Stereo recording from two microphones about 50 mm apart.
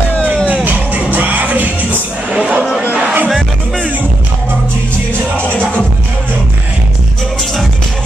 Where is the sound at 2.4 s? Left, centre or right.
Right.